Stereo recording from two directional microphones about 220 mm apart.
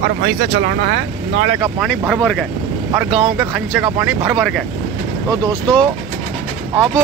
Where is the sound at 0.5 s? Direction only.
50° right (ahead or behind).